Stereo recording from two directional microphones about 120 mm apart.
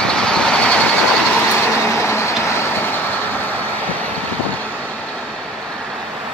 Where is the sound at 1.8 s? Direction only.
20° left (ahead or behind).